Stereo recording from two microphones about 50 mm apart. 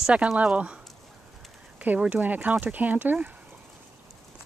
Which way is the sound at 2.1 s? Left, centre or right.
Right.